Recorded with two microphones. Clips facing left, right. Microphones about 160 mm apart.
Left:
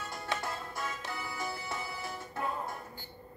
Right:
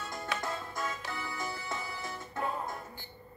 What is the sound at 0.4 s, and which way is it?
Music, 10° left (ahead or behind).